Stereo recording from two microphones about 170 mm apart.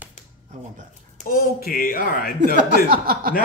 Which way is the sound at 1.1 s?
60° left (ahead or behind).